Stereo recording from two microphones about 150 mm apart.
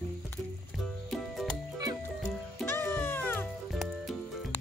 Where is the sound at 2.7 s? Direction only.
15° left (ahead or behind).